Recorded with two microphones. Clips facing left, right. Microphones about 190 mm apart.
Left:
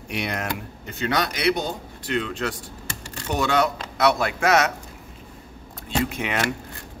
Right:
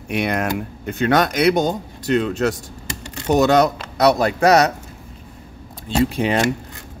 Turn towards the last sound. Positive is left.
turn(degrees=-30)  # may be behind; listen again after turning